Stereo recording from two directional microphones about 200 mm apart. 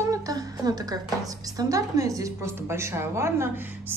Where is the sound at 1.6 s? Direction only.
15° right (ahead or behind).